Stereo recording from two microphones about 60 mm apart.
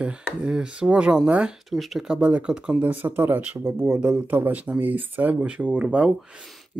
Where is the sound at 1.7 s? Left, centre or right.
Centre.